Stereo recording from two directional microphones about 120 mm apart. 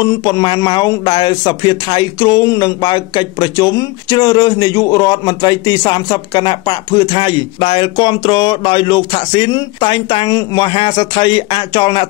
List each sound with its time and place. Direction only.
0.0 s speech: 35° left (ahead or behind)